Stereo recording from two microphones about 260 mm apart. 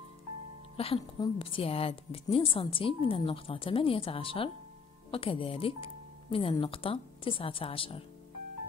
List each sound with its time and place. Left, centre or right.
0.7 s a woman's voice: left